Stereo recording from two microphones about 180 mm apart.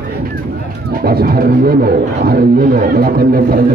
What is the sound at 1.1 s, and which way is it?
Didgeridoo, 55° right (ahead or behind).